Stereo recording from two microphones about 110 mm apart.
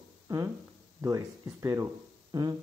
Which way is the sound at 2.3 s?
40° right (ahead or behind).